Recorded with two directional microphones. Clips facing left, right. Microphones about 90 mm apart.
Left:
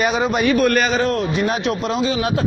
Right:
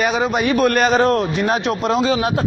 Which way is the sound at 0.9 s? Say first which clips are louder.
Right 4 dB; 45° right (ahead or behind).